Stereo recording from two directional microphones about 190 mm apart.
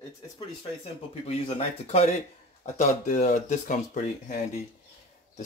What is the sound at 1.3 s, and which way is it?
Speech, 35° left (ahead or behind).